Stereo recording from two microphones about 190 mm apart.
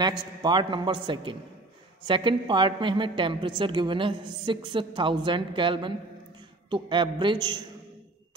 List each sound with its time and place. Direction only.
0.4 s a woman's voice: 25° right (ahead or behind)